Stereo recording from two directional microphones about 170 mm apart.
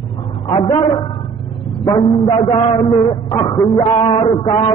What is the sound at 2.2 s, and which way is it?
A man's voice, 30° left (ahead or behind).